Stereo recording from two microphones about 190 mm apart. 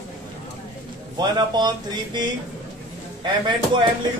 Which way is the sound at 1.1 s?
20° right (ahead or behind).